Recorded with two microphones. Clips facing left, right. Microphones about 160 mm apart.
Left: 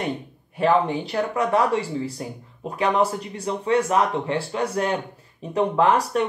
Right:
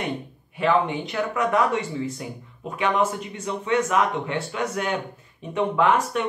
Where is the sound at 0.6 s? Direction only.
40° left (ahead or behind).